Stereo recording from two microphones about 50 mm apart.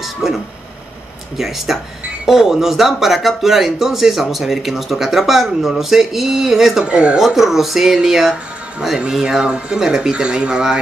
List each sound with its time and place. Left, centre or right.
0.0 s vehicle: centre
1.7 s speech: centre
6.9 s speech: right
7.2 s speech: centre